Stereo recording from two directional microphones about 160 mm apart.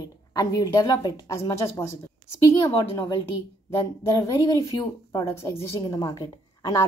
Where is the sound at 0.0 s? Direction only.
20° left (ahead or behind).